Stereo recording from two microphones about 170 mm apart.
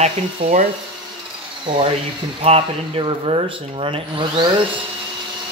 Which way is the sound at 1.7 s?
30° right (ahead or behind).